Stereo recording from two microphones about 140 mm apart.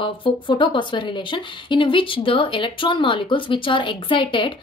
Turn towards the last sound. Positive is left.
turn(degrees=40)  # may be behind; listen again after turning